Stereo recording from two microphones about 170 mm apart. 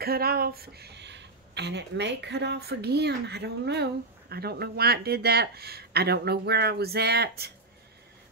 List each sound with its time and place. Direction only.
0.0 s speech: 65° right (ahead or behind)